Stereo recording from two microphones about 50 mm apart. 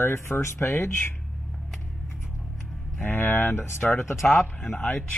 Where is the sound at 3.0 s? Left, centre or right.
Left.